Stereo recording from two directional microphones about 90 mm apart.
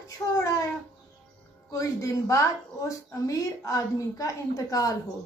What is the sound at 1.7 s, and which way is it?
A woman's voice, 40° left (ahead or behind).